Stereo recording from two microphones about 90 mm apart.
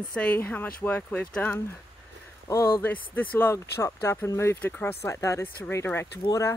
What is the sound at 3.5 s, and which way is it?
Speech, 30° left (ahead or behind).